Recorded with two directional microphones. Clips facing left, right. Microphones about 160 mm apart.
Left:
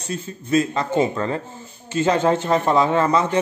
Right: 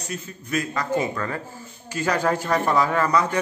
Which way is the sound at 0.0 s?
25° left (ahead or behind).